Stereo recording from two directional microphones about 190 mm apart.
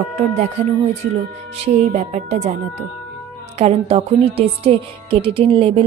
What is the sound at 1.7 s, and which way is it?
Speech, 35° right (ahead or behind).